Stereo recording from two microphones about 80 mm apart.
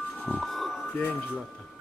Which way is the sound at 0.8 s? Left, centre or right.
Centre.